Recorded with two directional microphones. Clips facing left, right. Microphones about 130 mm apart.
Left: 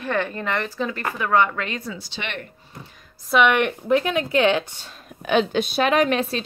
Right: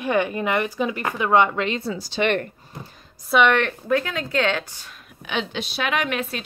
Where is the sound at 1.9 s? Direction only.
45° right (ahead or behind).